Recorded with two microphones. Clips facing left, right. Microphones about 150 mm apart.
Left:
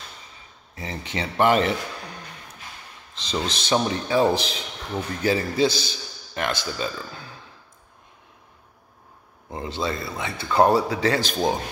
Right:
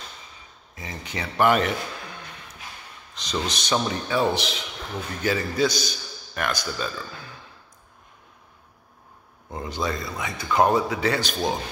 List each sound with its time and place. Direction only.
0.7 s a man's voice: 30° left (ahead or behind)
3.2 s a man's voice: 30° left (ahead or behind)
9.5 s a man's voice: 25° left (ahead or behind)